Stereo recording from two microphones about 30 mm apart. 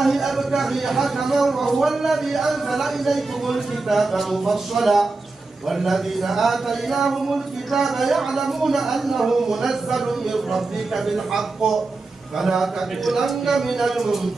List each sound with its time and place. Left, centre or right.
0.0 s speech: centre